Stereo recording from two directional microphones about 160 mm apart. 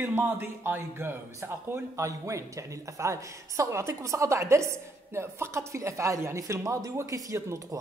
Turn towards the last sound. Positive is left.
turn(degrees=-20)  # may be behind; listen again after turning